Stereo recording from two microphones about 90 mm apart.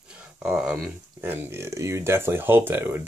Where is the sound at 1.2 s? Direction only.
25° right (ahead or behind).